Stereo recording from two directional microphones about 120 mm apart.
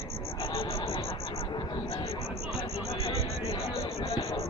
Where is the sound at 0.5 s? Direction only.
50° left (ahead or behind).